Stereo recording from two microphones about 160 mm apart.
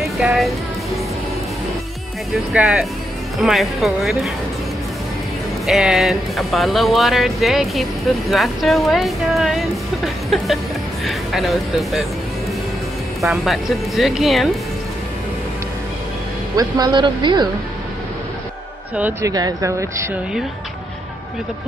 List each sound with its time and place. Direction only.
0.2 s speech: 5° right (ahead or behind)
2.5 s speech: 5° right (ahead or behind)
5.7 s speech: 5° right (ahead or behind)
13.2 s speech: centre (ahead or behind)
16.5 s speech: 25° right (ahead or behind)
19.2 s speech: 20° right (ahead or behind)